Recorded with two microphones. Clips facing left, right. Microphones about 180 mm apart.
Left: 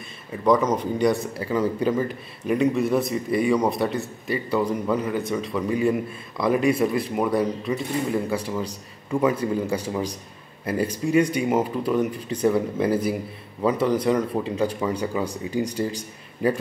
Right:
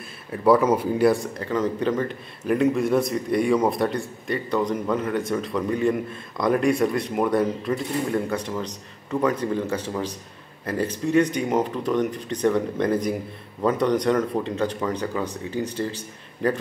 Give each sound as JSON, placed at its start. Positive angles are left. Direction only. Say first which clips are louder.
{"t": 0.3, "sound": "speech", "louder": "right 2 dB", "side_deg": -5}
{"t": 1.4, "sound": "speech", "louder": "left 1 dB", "side_deg": 10}